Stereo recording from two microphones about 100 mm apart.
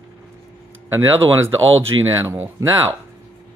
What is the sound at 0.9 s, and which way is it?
Speech, 25° right (ahead or behind).